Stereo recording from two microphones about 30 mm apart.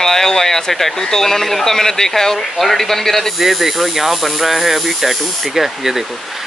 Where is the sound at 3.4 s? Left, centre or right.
Centre.